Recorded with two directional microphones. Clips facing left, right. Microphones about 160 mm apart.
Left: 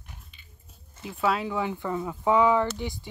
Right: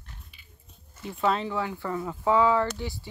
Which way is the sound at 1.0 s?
5° left (ahead or behind).